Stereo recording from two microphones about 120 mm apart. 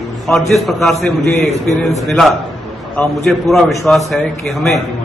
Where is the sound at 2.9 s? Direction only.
5° left (ahead or behind).